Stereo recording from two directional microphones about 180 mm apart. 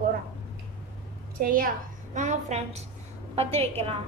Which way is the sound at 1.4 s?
50° right (ahead or behind).